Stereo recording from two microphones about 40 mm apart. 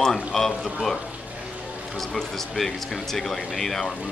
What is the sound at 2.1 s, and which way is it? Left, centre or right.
Speech, centre.